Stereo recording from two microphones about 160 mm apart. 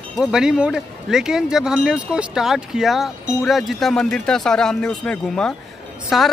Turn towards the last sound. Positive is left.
turn(degrees=0)  # may be behind; listen again after turning